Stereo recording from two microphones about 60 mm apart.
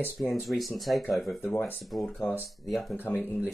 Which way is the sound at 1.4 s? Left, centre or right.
Centre.